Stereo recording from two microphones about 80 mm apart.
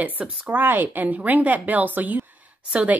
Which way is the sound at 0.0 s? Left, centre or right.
Right.